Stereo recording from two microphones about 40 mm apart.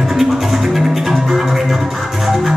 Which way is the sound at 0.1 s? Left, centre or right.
Centre.